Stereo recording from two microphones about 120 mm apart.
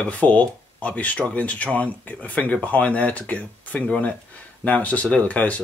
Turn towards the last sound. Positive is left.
turn(degrees=10)  # may be behind; listen again after turning